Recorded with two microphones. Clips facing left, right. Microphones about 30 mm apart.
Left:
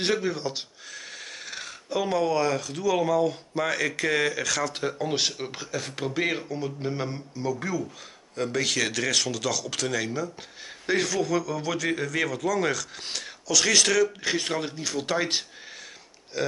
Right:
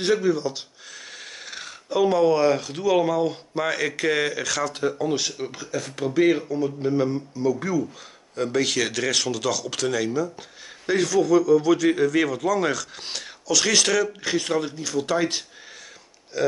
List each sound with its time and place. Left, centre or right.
0.0 s speech: centre
0.9 s speech: centre
4.7 s speech: centre